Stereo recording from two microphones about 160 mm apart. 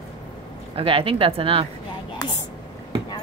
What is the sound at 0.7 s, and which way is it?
Speech, 35° right (ahead or behind).